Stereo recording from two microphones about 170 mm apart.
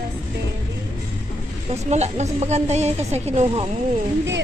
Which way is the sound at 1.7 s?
40° right (ahead or behind).